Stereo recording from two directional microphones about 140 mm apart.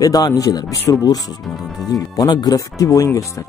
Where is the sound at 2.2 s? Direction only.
25° left (ahead or behind).